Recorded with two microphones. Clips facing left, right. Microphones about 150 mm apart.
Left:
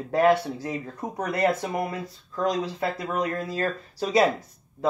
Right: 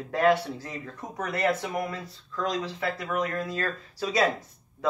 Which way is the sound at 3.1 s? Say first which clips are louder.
Left 2 dB; 30° left (ahead or behind).